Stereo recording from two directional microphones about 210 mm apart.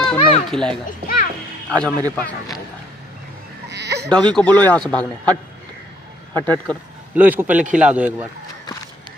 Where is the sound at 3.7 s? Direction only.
55° right (ahead or behind).